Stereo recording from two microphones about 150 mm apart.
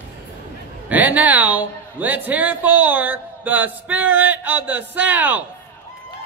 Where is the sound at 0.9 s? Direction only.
10° right (ahead or behind).